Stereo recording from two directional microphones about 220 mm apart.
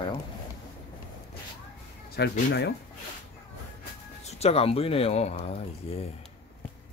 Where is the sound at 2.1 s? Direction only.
50° left (ahead or behind).